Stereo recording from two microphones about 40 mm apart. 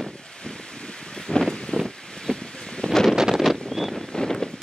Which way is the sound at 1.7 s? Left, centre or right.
Centre.